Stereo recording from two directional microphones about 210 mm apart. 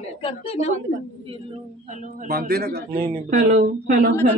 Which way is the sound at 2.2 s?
50° right (ahead or behind).